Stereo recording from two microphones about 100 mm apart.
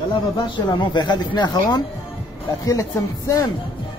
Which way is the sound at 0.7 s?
45° left (ahead or behind).